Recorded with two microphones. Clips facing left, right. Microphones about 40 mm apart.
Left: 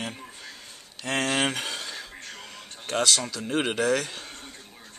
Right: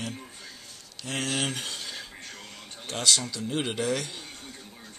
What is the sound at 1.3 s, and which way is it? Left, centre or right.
Speech, left.